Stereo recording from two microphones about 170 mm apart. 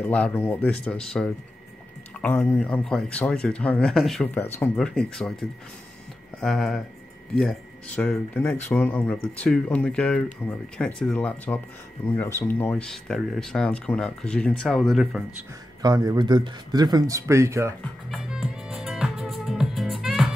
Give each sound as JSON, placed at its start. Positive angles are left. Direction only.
{"t": 0.0, "sound": "speech", "side_deg": 10}
{"t": 6.4, "sound": "speech", "side_deg": 5}
{"t": 15.8, "sound": "speech", "side_deg": -20}
{"t": 18.1, "sound": "music", "side_deg": -5}